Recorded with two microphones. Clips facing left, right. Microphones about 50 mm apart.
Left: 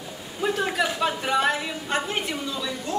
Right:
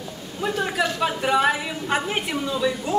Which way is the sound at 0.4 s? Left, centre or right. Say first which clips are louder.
Right 1 dB; centre.